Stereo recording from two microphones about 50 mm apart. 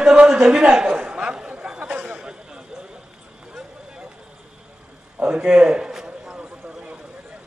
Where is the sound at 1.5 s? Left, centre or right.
Right.